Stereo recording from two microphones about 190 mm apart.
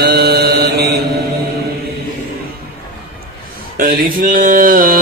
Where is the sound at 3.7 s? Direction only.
50° right (ahead or behind).